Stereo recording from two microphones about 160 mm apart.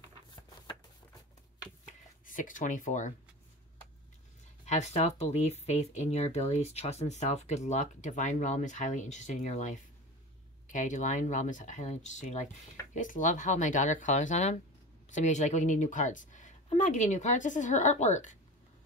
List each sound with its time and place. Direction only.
1.9 s speech: 55° left (ahead or behind)
4.6 s speech: 45° left (ahead or behind)